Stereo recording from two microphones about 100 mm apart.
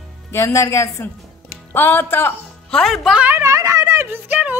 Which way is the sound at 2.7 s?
5° left (ahead or behind).